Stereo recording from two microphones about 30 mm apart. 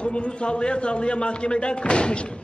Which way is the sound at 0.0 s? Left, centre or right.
Left.